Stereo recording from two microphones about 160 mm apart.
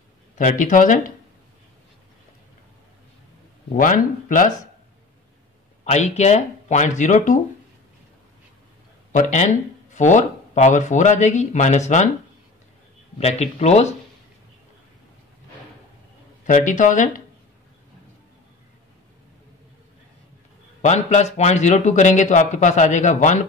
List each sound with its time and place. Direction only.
0.4 s speech: 55° left (ahead or behind)
3.6 s speech: 55° left (ahead or behind)
5.9 s speech: 45° left (ahead or behind)
9.1 s speech: 50° left (ahead or behind)
13.2 s speech: 40° left (ahead or behind)
16.4 s speech: 50° left (ahead or behind)
20.8 s speech: 45° left (ahead or behind)